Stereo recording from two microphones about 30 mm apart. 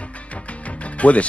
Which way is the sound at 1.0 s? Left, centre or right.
Left.